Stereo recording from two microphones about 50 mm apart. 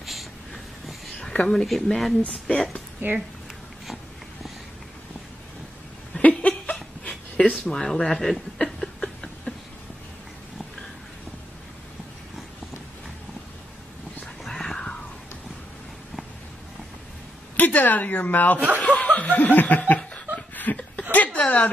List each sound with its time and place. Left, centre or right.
0.0 s a sound: centre
1.5 s speech: centre
3.0 s speech: right
3.8 s a sound: centre
6.3 s laughter: left
7.6 s speech: centre
14.4 s whispering: centre
17.6 s a woman's voice: left
18.8 s chuckle: left
21.1 s a sound: left